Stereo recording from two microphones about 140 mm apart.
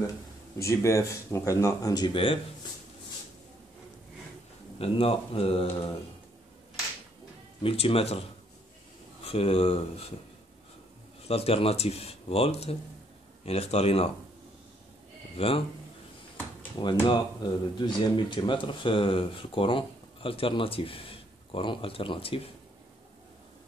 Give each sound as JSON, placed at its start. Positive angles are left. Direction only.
{"t": 0.6, "sound": "speech", "side_deg": 20}
{"t": 4.7, "sound": "speech", "side_deg": 45}
{"t": 7.6, "sound": "speech", "side_deg": 45}
{"t": 9.2, "sound": "speech", "side_deg": 45}
{"t": 11.2, "sound": "speech", "side_deg": 45}
{"t": 15.3, "sound": "speech", "side_deg": 40}
{"t": 16.8, "sound": "speech", "side_deg": 35}